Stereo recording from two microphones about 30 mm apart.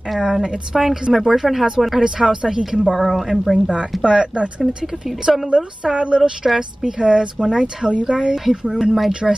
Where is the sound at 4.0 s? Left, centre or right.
Right.